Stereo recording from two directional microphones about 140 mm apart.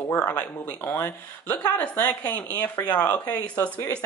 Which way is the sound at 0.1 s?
15° left (ahead or behind).